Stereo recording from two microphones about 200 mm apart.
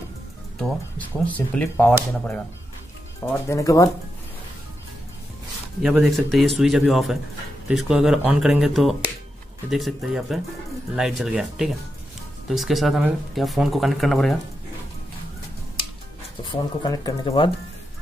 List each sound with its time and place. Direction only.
0.6 s speech: 5° left (ahead or behind)
3.3 s speech: 15° left (ahead or behind)
5.8 s speech: centre (ahead or behind)
16.8 s speech: 20° left (ahead or behind)